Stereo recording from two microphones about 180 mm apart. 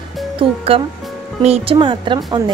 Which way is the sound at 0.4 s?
30° right (ahead or behind).